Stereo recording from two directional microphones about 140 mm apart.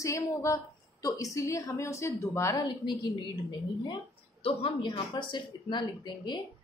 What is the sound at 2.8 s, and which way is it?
Speech, 35° left (ahead or behind).